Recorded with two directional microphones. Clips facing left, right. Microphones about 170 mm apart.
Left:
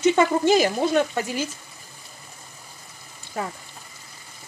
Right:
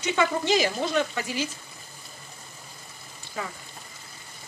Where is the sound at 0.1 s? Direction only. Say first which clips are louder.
Left 5 dB; 50° left (ahead or behind).